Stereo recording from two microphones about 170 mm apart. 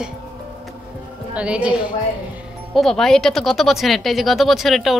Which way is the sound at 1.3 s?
5° right (ahead or behind).